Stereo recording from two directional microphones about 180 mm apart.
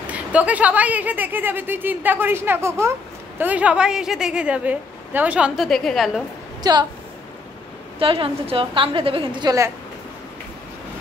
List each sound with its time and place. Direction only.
0.0 s a woman's voice: 10° right (ahead or behind)
6.6 s a woman's voice: 25° right (ahead or behind)
8.0 s a woman's voice: 30° right (ahead or behind)